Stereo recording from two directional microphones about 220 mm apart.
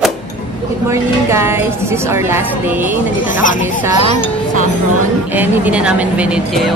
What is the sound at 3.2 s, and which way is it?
Speech, 35° left (ahead or behind).